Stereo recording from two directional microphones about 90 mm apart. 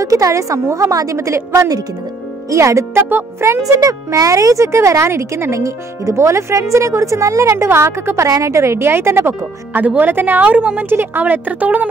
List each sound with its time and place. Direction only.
0.0 s speech: 40° right (ahead or behind)
3.6 s speech: 40° right (ahead or behind); by 11.9 s 15° right (ahead or behind)